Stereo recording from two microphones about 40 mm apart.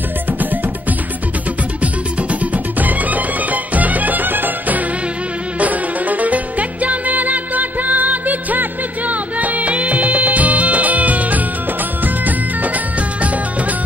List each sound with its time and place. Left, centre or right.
2.5 s music: right